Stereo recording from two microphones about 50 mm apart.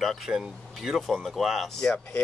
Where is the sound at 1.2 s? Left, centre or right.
Centre.